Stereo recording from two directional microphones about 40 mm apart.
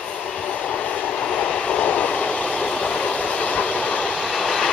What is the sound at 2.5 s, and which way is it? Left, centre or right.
Train, centre.